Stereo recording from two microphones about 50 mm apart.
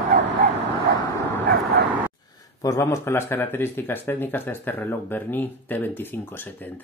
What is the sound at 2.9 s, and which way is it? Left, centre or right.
Speech, left.